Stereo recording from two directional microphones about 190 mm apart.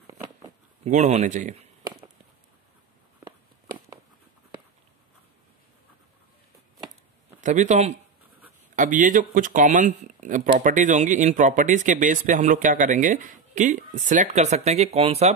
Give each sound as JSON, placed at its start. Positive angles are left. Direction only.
{"t": 0.0, "sound": "shuffling cards", "side_deg": -20}
{"t": 0.8, "sound": "speech", "side_deg": -40}
{"t": 7.4, "sound": "speech", "side_deg": -40}